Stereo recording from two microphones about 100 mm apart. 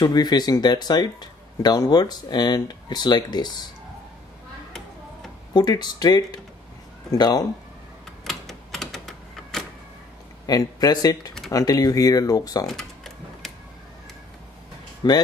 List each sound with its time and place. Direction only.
0.0 s speech: 45° left (ahead or behind)
5.5 s speech: 45° left (ahead or behind)
8.2 s typewriter: 5° left (ahead or behind)
10.4 s speech: 40° left (ahead or behind)
12.6 s a sound: 5° left (ahead or behind)
15.0 s speech: 45° left (ahead or behind)